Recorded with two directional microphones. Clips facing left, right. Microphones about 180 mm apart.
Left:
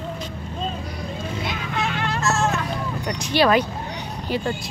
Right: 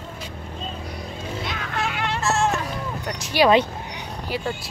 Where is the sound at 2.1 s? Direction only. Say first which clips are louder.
Even; 30° right (ahead or behind).